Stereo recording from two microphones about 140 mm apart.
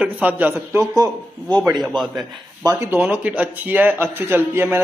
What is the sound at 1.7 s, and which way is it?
Speech, centre (ahead or behind).